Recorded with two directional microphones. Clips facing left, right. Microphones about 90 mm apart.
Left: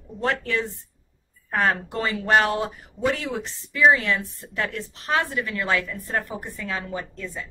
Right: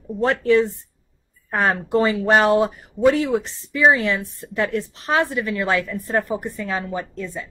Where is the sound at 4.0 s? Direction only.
15° right (ahead or behind).